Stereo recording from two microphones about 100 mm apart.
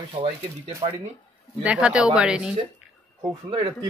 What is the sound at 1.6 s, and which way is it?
Speech, 10° right (ahead or behind).